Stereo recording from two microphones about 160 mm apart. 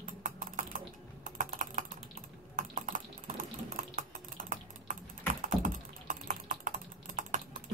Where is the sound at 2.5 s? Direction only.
55° right (ahead or behind).